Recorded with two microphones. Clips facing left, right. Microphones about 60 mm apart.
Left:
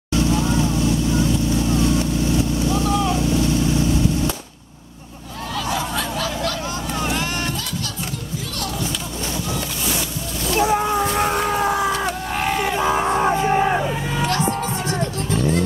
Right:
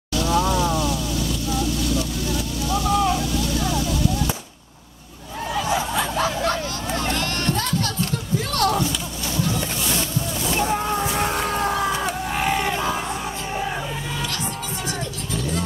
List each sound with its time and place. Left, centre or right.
0.7 s vehicle: left
5.7 s snicker: right
7.0 s vehicle: centre
8.5 s a sound: right
10.6 s boat: centre
11.1 s vehicle: centre
12.1 s a sound: centre
13.2 s music: left
13.7 s vehicle: centre
14.2 s music: left